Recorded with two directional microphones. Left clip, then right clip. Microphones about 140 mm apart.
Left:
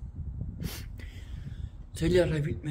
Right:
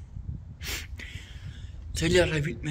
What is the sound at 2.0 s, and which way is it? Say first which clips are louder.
Speech: right 2 dB; 10° left (ahead or behind).